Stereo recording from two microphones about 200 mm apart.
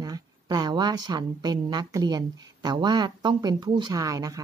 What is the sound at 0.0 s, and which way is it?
A woman's voice, 20° right (ahead or behind).